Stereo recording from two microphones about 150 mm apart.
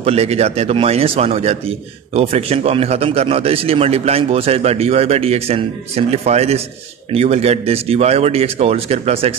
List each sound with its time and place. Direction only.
0.0 s a man's voice: 40° right (ahead or behind)